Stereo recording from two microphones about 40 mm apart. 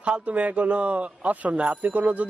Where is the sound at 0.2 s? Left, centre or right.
Right.